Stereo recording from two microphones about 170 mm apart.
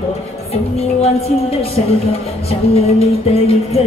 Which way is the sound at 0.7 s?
35° left (ahead or behind).